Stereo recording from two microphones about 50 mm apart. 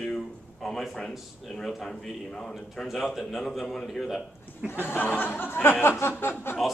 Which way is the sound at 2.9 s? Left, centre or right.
Centre.